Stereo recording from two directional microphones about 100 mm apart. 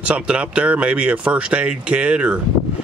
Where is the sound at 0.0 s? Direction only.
10° right (ahead or behind).